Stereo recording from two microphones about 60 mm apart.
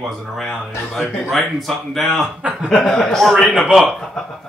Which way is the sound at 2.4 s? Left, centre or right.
Centre.